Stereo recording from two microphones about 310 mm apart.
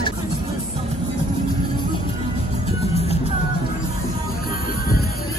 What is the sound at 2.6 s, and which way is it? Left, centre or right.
Music, centre.